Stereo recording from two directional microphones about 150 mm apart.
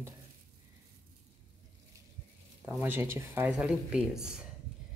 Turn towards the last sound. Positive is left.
turn(degrees=-5)  # may be behind; listen again after turning